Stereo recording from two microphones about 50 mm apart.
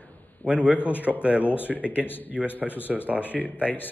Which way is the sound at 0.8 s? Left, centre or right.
Left.